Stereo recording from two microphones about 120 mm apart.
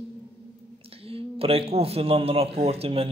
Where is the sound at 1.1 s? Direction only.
55° right (ahead or behind).